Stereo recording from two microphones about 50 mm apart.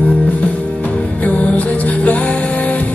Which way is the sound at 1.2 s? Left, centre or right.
Left.